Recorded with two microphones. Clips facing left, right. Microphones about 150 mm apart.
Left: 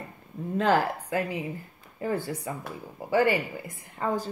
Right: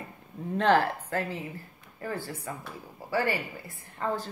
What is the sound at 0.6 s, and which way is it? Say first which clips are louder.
A woman's voice: even; 10° left (ahead or behind).